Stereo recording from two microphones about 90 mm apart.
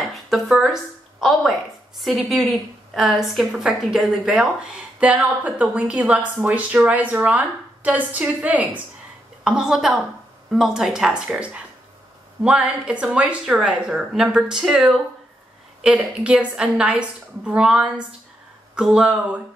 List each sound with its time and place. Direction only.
0.1 s a woman's voice: centre (ahead or behind)